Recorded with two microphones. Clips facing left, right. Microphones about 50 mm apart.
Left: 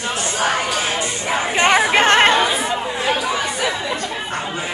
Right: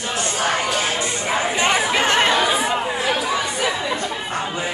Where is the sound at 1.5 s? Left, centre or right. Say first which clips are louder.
Left 7 dB; left.